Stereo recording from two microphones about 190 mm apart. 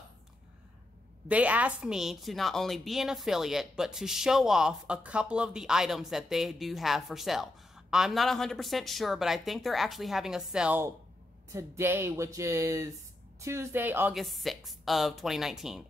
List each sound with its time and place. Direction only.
1.3 s a woman's voice: 10° right (ahead or behind)